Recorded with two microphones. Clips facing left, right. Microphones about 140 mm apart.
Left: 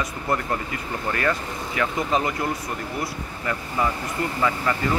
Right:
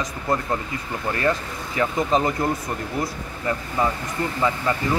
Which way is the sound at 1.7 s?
35° right (ahead or behind).